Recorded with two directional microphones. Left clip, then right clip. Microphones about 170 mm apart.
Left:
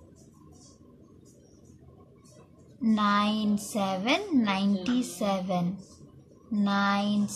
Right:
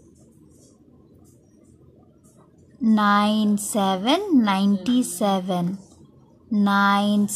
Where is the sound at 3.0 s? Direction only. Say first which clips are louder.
Right 7 dB; 45° right (ahead or behind).